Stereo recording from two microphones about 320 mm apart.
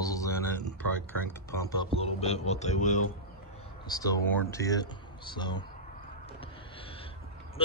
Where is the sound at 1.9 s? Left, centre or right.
Centre.